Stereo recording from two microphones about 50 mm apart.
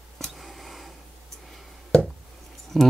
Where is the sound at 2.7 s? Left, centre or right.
Centre.